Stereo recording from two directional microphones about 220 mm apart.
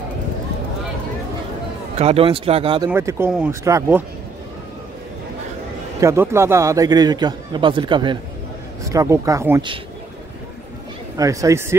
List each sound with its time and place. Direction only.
2.0 s speech: 25° right (ahead or behind)
2.9 s a man's voice: 10° right (ahead or behind)
5.9 s a man's voice: 10° right (ahead or behind)
11.1 s a man's voice: 15° right (ahead or behind)